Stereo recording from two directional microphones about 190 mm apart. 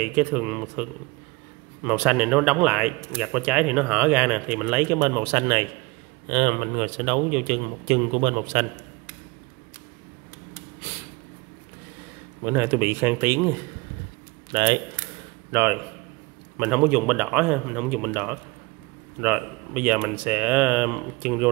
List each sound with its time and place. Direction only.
0.0 s speech: 10° right (ahead or behind)
4.9 s a man's voice: 20° right (ahead or behind)
12.4 s speech: 10° right (ahead or behind)
14.5 s speech: 25° right (ahead or behind)
15.5 s speech: 10° right (ahead or behind)